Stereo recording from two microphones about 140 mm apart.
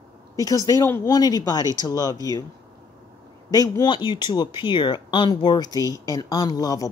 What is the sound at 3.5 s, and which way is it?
Speech, 25° left (ahead or behind).